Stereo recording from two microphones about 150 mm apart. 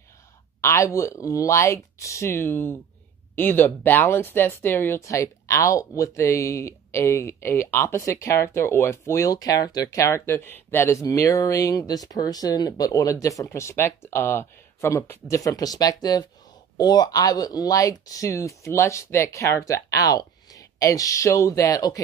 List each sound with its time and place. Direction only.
0.6 s speech: 20° left (ahead or behind)